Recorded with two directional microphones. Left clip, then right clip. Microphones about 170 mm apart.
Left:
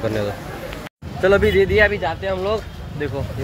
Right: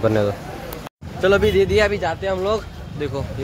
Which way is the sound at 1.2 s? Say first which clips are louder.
Left 1 dB; centre (ahead or behind).